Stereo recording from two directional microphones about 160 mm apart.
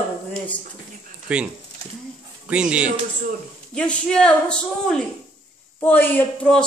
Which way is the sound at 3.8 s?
5° left (ahead or behind).